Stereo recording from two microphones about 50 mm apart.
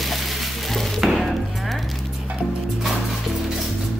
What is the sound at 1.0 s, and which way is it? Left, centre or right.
Music, centre.